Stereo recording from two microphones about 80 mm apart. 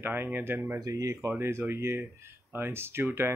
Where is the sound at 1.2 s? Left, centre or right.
Right.